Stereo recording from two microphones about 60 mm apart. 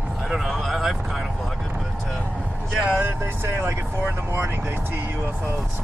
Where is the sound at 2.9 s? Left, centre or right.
Right.